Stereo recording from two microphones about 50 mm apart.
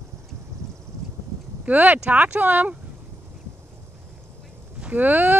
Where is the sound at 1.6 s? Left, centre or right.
Right.